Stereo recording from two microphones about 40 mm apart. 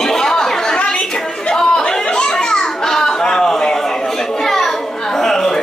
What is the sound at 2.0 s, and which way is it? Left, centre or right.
Children playing, centre.